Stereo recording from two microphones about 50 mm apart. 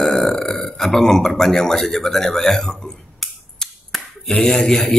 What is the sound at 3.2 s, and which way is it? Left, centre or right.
Finger snapping, centre.